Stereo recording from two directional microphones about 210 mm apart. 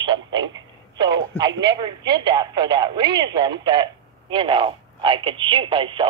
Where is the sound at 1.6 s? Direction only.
20° right (ahead or behind).